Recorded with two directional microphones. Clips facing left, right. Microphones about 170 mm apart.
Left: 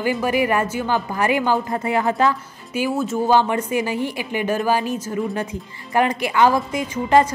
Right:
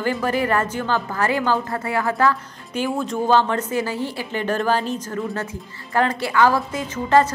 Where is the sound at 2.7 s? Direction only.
5° left (ahead or behind).